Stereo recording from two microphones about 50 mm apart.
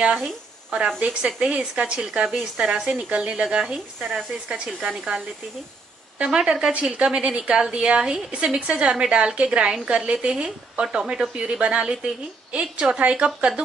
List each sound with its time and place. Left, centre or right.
0.2 s speech: right
1.2 s a woman's voice: centre